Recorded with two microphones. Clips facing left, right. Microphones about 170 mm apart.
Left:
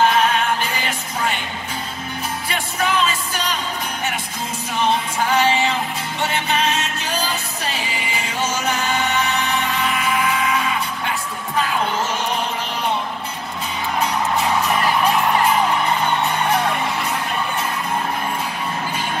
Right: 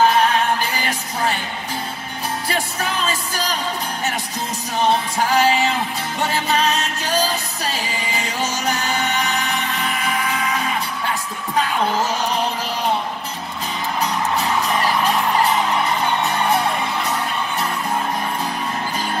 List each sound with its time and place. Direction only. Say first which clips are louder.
2.5 s music: left 5 dB; 40° right (ahead or behind)
5.3 s music: right 1 dB; 40° right (ahead or behind)